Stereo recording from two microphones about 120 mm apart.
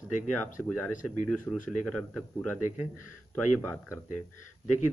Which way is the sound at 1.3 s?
5° left (ahead or behind).